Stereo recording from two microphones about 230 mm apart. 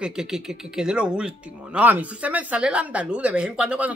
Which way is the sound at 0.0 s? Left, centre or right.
Centre.